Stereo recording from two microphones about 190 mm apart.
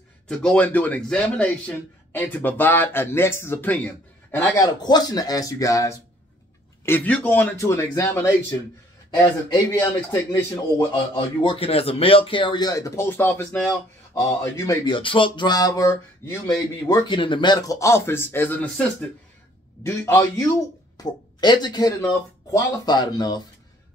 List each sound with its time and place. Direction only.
0.3 s a man's voice: 5° left (ahead or behind)
4.6 s a man's voice: 20° left (ahead or behind)
10.9 s a man's voice: 25° left (ahead or behind)